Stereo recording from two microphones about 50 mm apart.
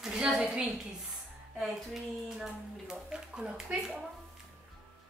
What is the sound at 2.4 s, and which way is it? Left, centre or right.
Speech, centre.